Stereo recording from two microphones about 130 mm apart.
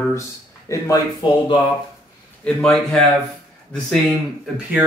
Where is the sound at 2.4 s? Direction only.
5° left (ahead or behind).